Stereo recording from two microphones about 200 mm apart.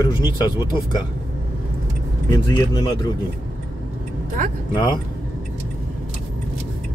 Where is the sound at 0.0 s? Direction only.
20° left (ahead or behind).